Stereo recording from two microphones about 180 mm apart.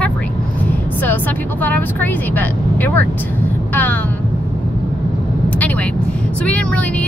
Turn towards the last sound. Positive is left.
turn(degrees=10)  # may be behind; listen again after turning